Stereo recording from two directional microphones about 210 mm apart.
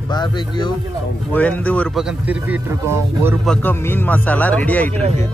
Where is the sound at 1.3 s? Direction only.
5° left (ahead or behind); by 3.3 s 10° right (ahead or behind).